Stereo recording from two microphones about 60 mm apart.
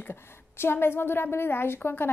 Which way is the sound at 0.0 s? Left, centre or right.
Left.